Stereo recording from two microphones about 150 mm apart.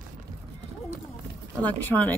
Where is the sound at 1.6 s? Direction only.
10° left (ahead or behind).